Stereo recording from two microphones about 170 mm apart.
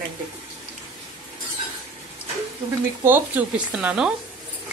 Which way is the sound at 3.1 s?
10° right (ahead or behind).